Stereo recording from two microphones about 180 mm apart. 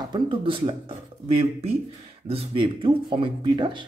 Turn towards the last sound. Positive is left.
turn(degrees=-25)  # may be behind; listen again after turning